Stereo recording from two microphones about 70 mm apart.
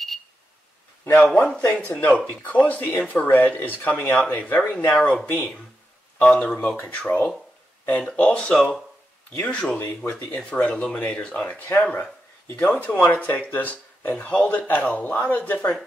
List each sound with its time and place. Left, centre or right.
1.2 s speech: centre